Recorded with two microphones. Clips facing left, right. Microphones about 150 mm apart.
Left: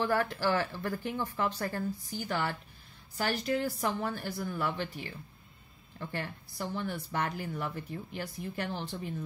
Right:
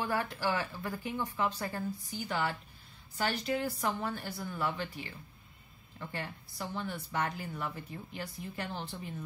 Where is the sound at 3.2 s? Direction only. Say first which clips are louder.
Left 2 dB; 45° left (ahead or behind).